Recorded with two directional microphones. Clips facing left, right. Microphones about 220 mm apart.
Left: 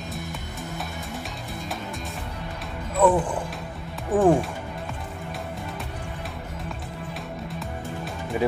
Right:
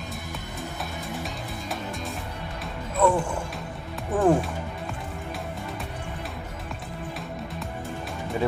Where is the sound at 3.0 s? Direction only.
20° left (ahead or behind).